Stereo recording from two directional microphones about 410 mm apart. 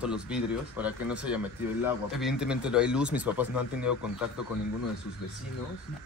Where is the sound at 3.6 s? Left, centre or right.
Left.